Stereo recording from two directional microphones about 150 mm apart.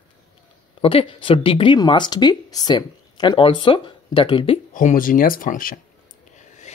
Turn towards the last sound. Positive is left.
turn(degrees=50)  # may be behind; listen again after turning